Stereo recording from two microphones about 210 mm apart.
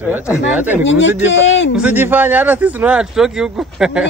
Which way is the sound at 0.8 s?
60° left (ahead or behind).